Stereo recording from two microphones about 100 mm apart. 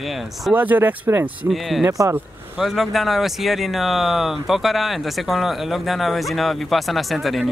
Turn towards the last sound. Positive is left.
turn(degrees=0)  # may be behind; listen again after turning